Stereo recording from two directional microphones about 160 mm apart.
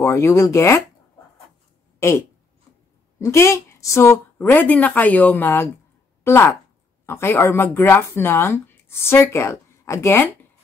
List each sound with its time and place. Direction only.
0.0 s speech: 15° left (ahead or behind)
2.0 s speech: 15° left (ahead or behind)